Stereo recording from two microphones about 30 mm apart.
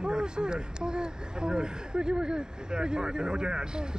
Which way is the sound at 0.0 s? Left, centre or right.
Right.